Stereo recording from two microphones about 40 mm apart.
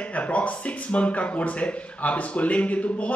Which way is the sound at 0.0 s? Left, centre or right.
Left.